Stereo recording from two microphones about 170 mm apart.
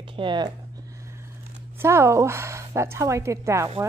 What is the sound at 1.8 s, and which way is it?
A woman's voice, 15° right (ahead or behind).